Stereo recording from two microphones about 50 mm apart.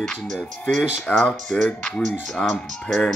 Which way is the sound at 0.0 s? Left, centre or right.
Centre.